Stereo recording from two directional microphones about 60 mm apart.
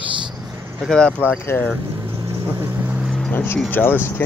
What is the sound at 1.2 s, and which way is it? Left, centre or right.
Speech, left.